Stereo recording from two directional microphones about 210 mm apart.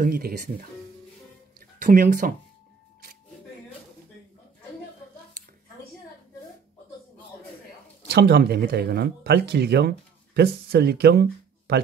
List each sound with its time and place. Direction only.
0.0 s speech: 45° right (ahead or behind)
1.8 s speech: 40° right (ahead or behind)
8.1 s speech: 50° right (ahead or behind)